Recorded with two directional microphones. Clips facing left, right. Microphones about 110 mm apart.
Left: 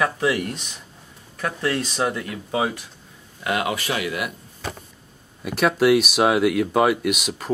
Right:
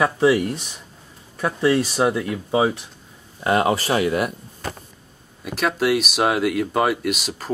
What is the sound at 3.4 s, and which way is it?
Speech, 35° right (ahead or behind).